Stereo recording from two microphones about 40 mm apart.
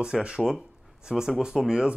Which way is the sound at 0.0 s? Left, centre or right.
Right.